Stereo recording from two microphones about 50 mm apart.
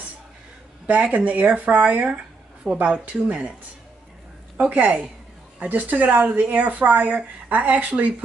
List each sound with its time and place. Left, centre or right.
0.8 s a woman's voice: right
4.6 s a woman's voice: right